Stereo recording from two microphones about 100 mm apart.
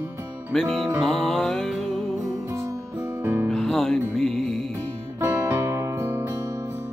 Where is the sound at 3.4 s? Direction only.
5° left (ahead or behind).